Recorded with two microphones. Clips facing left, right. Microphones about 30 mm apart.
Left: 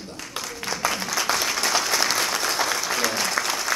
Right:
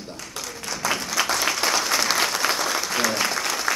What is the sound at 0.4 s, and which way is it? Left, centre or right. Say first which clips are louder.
Applause: left 3 dB; centre.